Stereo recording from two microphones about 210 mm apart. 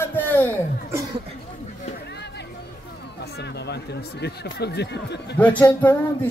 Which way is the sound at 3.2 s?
50° left (ahead or behind).